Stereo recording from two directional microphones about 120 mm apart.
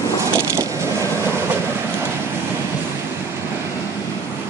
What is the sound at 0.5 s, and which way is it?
Vehicle, 25° right (ahead or behind).